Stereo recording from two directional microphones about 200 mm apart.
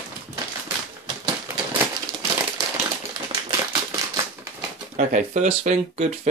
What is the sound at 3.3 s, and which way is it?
Typewriter, 25° right (ahead or behind).